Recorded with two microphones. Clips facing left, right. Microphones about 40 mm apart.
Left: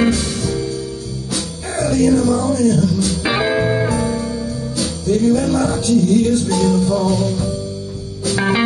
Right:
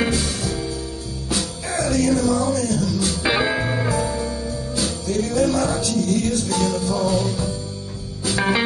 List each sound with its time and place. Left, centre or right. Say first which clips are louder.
0.0 s music: left 5 dB; centre
1.7 s music: left 5 dB; left
2.2 s music: left 5 dB; centre
5.0 s music: left 10 dB; left
5.4 s music: left 2 dB; left
6.5 s music: left 5 dB; centre
6.8 s music: left 5 dB; centre
7.1 s music: left 3 dB; centre